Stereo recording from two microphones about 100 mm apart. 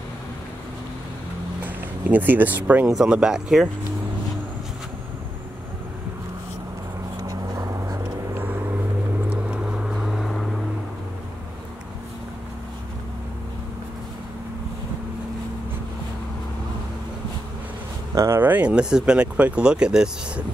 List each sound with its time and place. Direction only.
1.6 s speech: 15° right (ahead or behind)
3.0 s speech: 5° right (ahead or behind)
7.2 s a sound: 35° right (ahead or behind)
9.3 s vehicle: 10° right (ahead or behind)
18.1 s a sound: 30° right (ahead or behind)
18.4 s speech: 15° right (ahead or behind)